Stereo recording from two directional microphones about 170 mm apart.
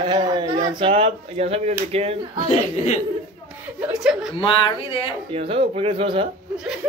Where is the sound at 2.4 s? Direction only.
40° left (ahead or behind).